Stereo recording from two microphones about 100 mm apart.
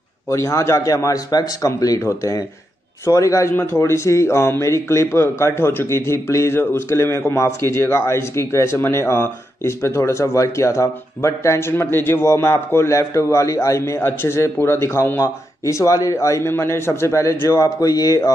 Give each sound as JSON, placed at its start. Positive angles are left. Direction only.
{"t": 0.3, "sound": "a man's voice", "side_deg": 30}
{"t": 15.6, "sound": "a man's voice", "side_deg": 35}